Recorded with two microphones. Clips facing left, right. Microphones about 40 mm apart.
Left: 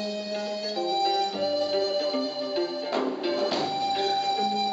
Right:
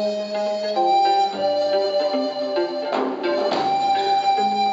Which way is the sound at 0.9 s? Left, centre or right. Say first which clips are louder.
Right 8 dB; right.